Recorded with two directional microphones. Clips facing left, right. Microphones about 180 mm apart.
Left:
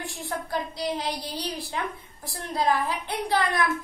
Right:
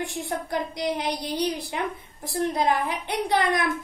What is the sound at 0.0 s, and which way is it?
A child's voice, 20° right (ahead or behind).